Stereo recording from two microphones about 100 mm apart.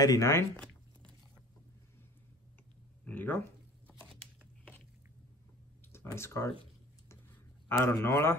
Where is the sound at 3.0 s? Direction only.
15° left (ahead or behind).